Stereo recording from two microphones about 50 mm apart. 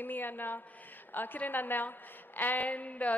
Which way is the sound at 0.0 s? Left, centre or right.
Left.